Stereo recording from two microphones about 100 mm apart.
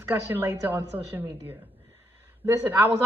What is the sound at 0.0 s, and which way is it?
Speech, 20° right (ahead or behind).